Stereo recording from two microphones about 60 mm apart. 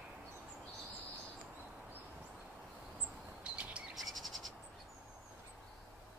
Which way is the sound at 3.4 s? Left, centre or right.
Centre.